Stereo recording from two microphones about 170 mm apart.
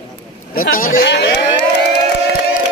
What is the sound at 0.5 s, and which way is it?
Speech, 60° left (ahead or behind).